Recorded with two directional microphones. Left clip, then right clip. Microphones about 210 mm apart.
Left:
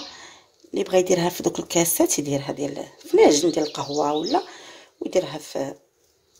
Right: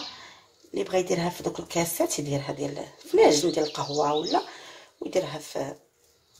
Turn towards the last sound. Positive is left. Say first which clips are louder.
# left 3 dB
turn(degrees=50)  # may be behind; listen again after turning